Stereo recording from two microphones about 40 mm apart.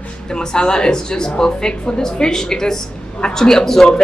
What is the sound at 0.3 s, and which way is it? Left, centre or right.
A woman's voice, centre.